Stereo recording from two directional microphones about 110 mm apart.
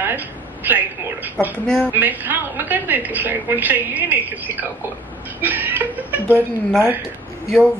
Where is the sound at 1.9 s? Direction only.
15° right (ahead or behind).